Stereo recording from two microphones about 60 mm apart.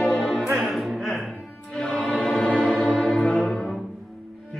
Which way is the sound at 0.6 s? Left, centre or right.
Centre.